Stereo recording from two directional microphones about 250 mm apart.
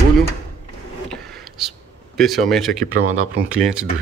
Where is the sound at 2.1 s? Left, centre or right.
Centre.